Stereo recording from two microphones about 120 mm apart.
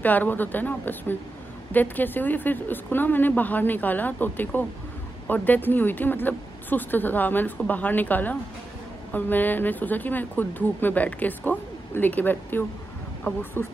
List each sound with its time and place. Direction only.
0.0 s speech: 15° left (ahead or behind)